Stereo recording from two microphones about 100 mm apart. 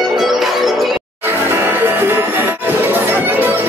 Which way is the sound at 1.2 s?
20° right (ahead or behind).